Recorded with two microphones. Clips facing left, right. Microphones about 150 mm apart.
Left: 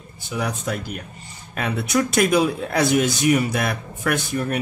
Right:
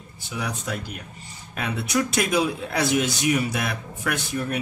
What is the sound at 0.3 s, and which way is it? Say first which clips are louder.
Speech: left 4 dB; 50° left (ahead or behind).